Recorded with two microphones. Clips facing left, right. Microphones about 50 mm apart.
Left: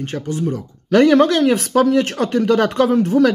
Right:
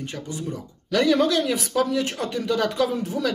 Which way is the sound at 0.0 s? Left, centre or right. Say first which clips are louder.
Left 9 dB; left.